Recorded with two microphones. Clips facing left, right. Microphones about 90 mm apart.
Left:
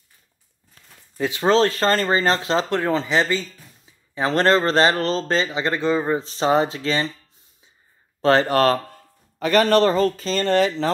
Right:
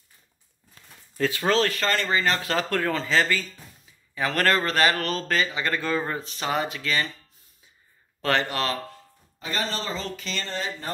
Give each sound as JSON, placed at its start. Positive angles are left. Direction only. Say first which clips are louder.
{"t": 1.1, "sound": "speech", "louder": "left 1 dB", "side_deg": 15}
{"t": 1.4, "sound": "speech", "louder": "left 7 dB", "side_deg": 30}
{"t": 6.2, "sound": "speech", "louder": "left 8 dB", "side_deg": 30}
{"t": 8.2, "sound": "speech", "louder": "left 9 dB", "side_deg": 30}
{"t": 9.4, "sound": "a man's voice", "louder": "left 14 dB", "side_deg": 65}
{"t": 10.1, "sound": "speech", "louder": "left 9 dB", "side_deg": 40}
{"t": 10.4, "sound": "speech", "louder": "left 17 dB", "side_deg": 70}